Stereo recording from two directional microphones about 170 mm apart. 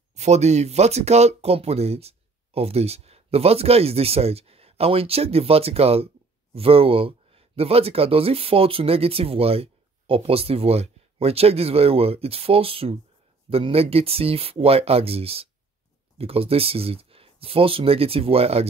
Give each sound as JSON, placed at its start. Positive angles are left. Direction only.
{"t": 0.1, "sound": "speech", "side_deg": -40}